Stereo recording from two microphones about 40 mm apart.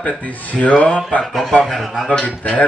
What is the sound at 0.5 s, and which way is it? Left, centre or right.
Speech, left.